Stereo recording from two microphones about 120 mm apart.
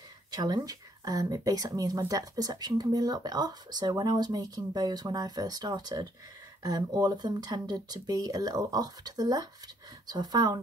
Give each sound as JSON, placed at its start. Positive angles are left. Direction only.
{"t": 0.3, "sound": "speech", "side_deg": -35}